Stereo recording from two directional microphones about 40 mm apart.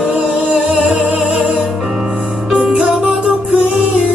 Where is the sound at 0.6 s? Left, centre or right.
Right.